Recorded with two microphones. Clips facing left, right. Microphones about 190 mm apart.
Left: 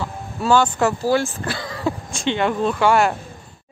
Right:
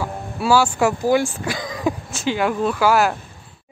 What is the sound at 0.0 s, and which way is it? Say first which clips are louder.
Speech: right 1 dB; 10° right (ahead or behind).